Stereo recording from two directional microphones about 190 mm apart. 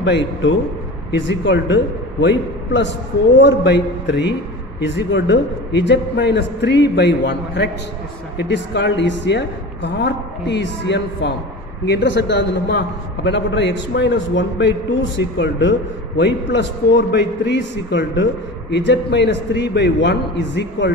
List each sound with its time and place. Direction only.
1.1 s a man's voice: 70° left (ahead or behind)